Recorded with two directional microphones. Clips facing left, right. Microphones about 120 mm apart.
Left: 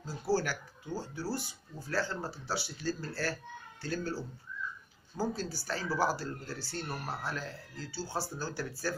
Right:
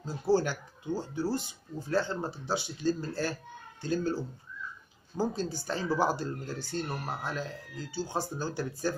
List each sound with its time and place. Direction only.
0.0 s speech: 20° right (ahead or behind)